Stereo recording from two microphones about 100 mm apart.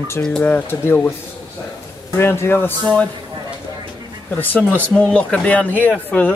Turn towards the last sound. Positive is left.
turn(degrees=15)  # may be behind; listen again after turning